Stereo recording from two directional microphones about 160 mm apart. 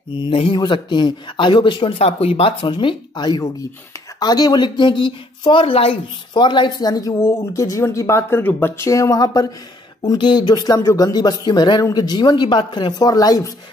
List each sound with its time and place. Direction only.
0.2 s speech: 35° left (ahead or behind)